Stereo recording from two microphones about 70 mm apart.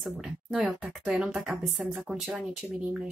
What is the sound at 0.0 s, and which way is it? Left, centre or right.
A woman's voice, centre.